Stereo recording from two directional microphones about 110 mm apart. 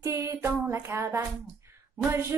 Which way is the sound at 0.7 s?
25° right (ahead or behind).